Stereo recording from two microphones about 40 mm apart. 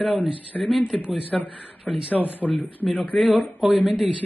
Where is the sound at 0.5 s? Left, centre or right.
Left.